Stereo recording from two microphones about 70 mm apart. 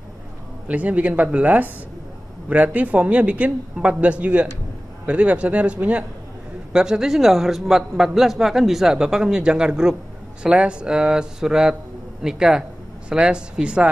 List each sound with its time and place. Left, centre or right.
0.7 s a man's voice: centre